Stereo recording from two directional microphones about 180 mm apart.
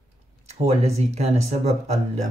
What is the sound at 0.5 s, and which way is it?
Speech, 35° right (ahead or behind).